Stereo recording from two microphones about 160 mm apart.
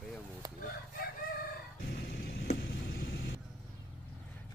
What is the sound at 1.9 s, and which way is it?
Vehicle, 85° left.